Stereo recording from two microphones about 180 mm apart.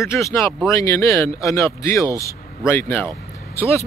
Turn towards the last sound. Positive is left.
turn(degrees=15)  # may be behind; listen again after turning